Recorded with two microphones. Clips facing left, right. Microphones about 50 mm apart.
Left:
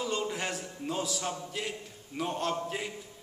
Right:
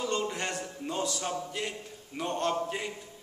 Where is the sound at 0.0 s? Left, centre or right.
Centre.